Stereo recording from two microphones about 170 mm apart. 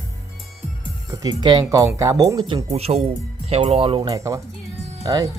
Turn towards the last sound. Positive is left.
turn(degrees=-20)  # may be behind; listen again after turning